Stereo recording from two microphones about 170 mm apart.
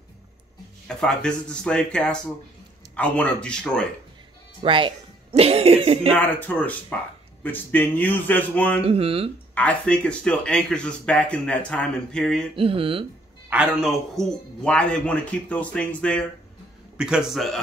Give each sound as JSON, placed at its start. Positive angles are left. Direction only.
{"t": 0.8, "sound": "speech", "side_deg": 5}
{"t": 4.6, "sound": "speech", "side_deg": -30}
{"t": 6.1, "sound": "a man's voice", "side_deg": 5}
{"t": 8.8, "sound": "speech", "side_deg": -35}
{"t": 9.6, "sound": "speech", "side_deg": 5}
{"t": 12.5, "sound": "speech", "side_deg": -35}
{"t": 13.5, "sound": "speech", "side_deg": -5}
{"t": 16.9, "sound": "speech", "side_deg": -5}